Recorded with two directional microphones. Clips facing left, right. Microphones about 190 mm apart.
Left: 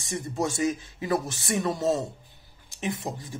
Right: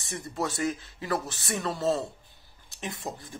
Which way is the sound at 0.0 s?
20° left (ahead or behind).